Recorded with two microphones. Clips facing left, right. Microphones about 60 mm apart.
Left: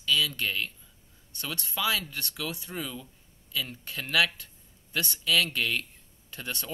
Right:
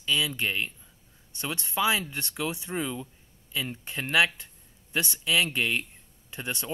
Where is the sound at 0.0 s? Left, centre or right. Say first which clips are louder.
Even; right.